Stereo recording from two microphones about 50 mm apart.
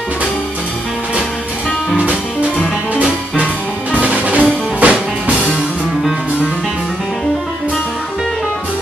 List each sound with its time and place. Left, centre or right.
3.9 s music: right